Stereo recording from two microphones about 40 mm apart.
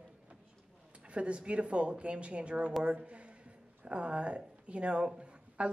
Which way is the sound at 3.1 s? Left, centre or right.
Right.